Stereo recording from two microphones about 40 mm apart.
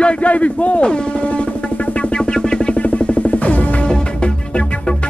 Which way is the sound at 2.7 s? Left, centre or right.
Left.